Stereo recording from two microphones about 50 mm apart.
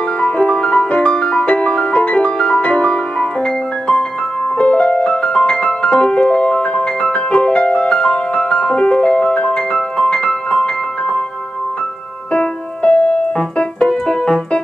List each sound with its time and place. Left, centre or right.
0.2 s music: left
12.3 s keyboard: left